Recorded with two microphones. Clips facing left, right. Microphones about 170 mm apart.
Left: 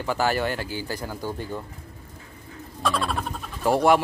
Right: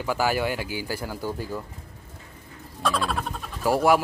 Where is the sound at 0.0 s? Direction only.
10° right (ahead or behind).